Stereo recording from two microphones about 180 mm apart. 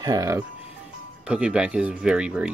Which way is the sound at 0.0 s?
20° right (ahead or behind).